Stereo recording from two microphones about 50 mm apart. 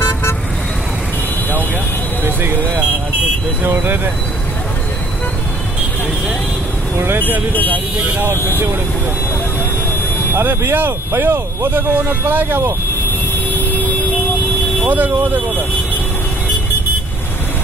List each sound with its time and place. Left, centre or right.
3.8 s speech: right
7.0 s speech: right
10.3 s speech: right
11.9 s speech: right
14.9 s speech: right